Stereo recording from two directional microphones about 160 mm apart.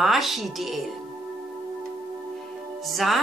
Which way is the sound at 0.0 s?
Centre (ahead or behind).